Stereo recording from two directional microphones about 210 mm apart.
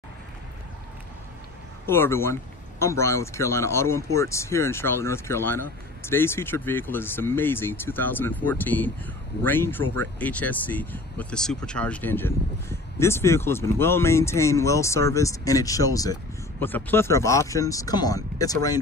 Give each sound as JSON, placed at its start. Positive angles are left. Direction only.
{"t": 1.9, "sound": "speech", "side_deg": 10}